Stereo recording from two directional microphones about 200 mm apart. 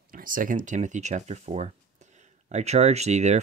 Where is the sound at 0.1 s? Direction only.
45° right (ahead or behind).